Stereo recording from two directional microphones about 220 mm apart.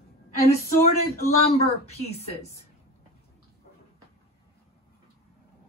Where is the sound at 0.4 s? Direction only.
45° left (ahead or behind).